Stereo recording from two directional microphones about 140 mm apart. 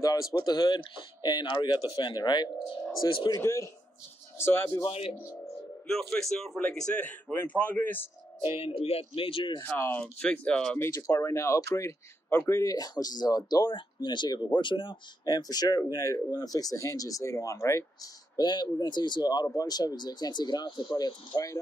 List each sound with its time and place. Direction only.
0.0 s a man's voice: 25° left (ahead or behind)
3.3 s a man's voice: 20° left (ahead or behind)
4.8 s speech: 45° left (ahead or behind)
5.9 s a man's voice: 5° left (ahead or behind)
8.8 s a man's voice: 45° left (ahead or behind)
9.6 s a man's voice: 15° left (ahead or behind)
10.9 s speech: 25° left (ahead or behind)